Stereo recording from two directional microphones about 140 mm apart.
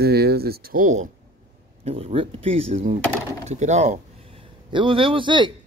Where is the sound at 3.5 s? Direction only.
55° right (ahead or behind).